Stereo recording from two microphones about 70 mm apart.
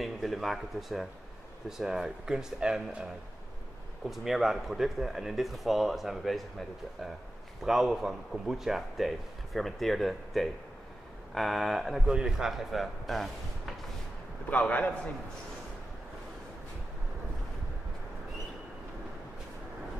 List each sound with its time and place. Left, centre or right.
0.0 s speech: centre
4.1 s speech: centre
7.6 s speech: centre
14.5 s a man's voice: left